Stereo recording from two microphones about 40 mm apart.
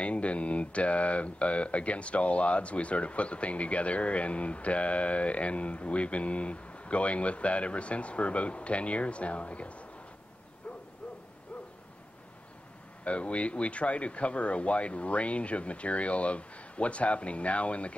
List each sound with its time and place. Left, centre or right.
0.0 s speech: left
13.0 s speech: left